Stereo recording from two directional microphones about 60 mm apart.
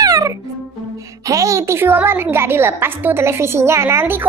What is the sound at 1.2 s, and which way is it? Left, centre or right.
Speech, right.